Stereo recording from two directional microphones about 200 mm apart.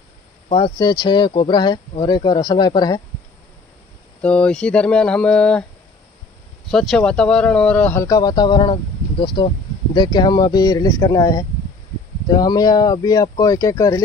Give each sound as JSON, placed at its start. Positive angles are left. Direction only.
{"t": 0.5, "sound": "speech", "side_deg": 25}
{"t": 4.2, "sound": "speech", "side_deg": 5}
{"t": 6.7, "sound": "speech", "side_deg": 0}